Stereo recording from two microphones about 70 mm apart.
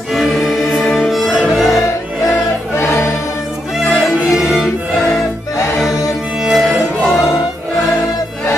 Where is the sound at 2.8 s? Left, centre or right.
Left.